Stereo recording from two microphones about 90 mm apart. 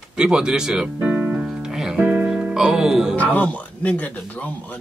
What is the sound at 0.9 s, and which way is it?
Keyboard, 20° right (ahead or behind).